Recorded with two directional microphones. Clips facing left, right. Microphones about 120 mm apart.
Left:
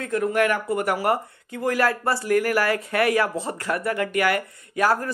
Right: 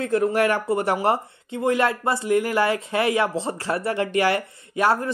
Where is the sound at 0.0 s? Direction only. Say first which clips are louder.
Right 2 dB; 30° right (ahead or behind).